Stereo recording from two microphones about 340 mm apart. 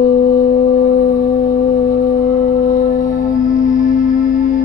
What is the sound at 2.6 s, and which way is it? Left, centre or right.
Music, left.